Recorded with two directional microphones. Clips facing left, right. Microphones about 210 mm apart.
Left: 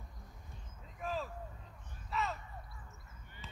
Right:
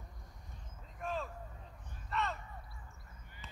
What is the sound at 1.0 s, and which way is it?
Vehicle, centre (ahead or behind).